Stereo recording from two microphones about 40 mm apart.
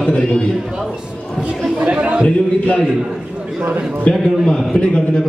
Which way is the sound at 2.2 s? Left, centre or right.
Left.